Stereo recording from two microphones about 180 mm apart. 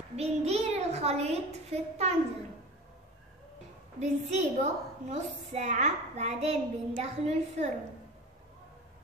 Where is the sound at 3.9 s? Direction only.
40° right (ahead or behind).